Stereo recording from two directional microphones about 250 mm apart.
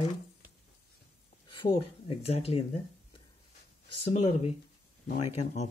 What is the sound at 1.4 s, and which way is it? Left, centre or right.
Speech, centre.